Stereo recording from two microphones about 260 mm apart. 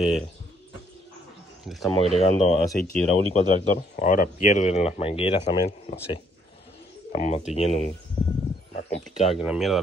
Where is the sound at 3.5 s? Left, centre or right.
Left.